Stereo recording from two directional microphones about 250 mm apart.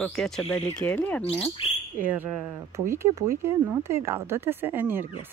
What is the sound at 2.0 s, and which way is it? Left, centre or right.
Speech, centre.